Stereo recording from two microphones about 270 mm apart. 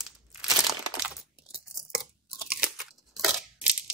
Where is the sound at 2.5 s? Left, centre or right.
Centre.